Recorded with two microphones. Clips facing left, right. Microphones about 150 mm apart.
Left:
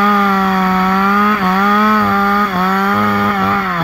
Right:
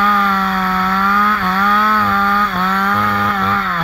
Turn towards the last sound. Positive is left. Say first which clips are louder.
# left 3 dB
turn(degrees=10)  # may be behind; listen again after turning